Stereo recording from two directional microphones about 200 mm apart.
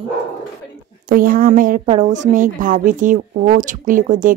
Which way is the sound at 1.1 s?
45° right (ahead or behind).